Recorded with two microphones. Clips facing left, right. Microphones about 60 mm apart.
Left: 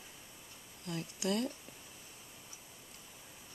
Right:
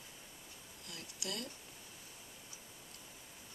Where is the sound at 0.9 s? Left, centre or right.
Left.